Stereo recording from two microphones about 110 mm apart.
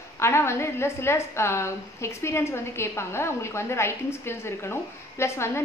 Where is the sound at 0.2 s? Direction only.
25° left (ahead or behind).